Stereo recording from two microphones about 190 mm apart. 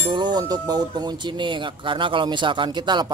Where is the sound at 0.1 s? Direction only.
20° right (ahead or behind).